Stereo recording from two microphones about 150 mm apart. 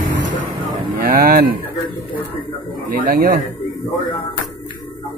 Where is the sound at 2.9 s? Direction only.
70° right (ahead or behind).